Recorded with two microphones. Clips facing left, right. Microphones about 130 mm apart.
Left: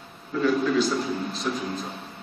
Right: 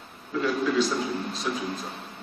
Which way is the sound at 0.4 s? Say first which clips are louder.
Left 2 dB; centre (ahead or behind).